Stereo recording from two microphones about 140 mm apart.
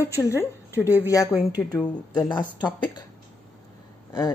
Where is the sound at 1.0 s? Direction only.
25° left (ahead or behind).